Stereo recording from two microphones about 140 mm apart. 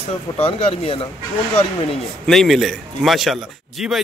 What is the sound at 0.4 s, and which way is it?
Speech, 45° left (ahead or behind).